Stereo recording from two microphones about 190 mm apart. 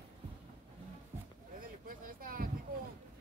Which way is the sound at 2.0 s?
50° right (ahead or behind).